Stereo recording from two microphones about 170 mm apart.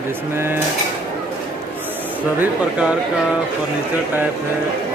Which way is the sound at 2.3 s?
5° right (ahead or behind).